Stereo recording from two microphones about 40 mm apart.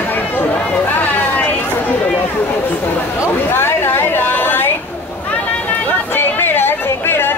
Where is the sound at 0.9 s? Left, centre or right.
Left.